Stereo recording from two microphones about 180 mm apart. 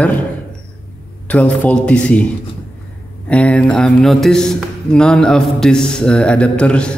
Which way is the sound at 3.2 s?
5° left (ahead or behind).